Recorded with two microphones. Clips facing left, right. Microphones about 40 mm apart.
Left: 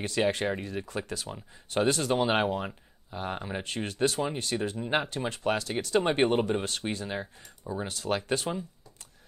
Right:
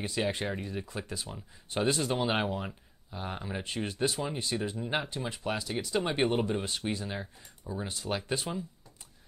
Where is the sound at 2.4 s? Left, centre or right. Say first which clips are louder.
Left 4 dB; left.